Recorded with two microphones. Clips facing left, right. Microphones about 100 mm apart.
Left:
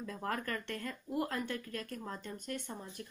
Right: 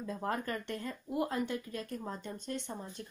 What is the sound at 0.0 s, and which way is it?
Speech, 20° right (ahead or behind).